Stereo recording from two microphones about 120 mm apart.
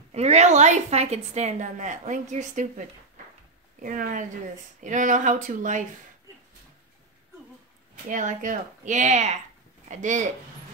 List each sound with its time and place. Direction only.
0.1 s a woman's voice: 65° right (ahead or behind); by 2.7 s 90° right
3.8 s a woman's voice: 90° right
8.1 s a woman's voice: 90° right
9.8 s speech: 90° right